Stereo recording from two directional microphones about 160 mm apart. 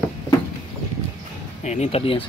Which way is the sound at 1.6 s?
45° left (ahead or behind).